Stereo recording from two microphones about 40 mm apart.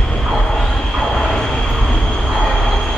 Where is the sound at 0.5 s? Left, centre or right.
Centre.